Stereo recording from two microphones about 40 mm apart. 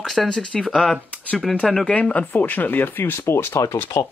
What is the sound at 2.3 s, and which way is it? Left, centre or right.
Speech, left.